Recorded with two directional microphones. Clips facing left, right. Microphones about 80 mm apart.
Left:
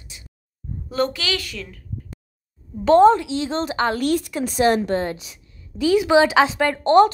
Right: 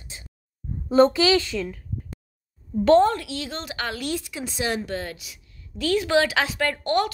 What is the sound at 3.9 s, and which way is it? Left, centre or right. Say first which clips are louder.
Speech: left 8 dB; left.